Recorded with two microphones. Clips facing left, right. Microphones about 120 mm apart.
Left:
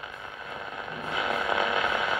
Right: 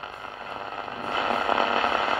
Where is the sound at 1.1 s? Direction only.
35° right (ahead or behind).